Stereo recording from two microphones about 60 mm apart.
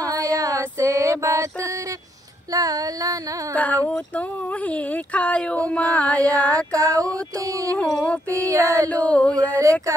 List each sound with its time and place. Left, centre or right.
0.0 s female singing: right
0.6 s music: right
2.5 s female singing: right
3.5 s speech: left
6.7 s a sound: right
7.8 s speech: centre
8.5 s music: right
8.9 s speech: left
9.6 s a sound: right